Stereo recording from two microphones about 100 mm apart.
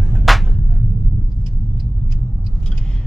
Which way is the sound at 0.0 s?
Centre (ahead or behind).